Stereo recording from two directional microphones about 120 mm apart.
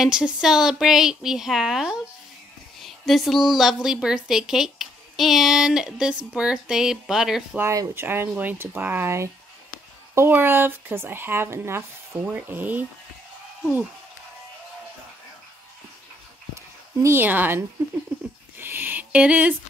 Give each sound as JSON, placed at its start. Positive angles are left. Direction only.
{"t": 0.0, "sound": "a woman's voice", "side_deg": -5}
{"t": 7.5, "sound": "speech", "side_deg": -25}
{"t": 17.0, "sound": "speech", "side_deg": -20}
{"t": 18.6, "sound": "a sound", "side_deg": -15}